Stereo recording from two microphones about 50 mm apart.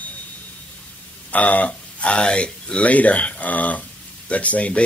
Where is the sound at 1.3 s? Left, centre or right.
Left.